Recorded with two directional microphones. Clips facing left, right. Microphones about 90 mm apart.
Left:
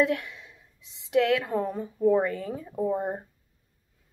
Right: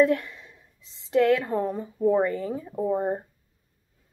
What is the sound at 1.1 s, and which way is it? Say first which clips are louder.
Speech: right 2 dB; centre (ahead or behind).